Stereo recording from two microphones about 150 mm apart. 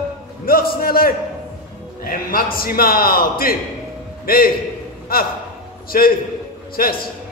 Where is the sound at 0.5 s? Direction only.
80° left.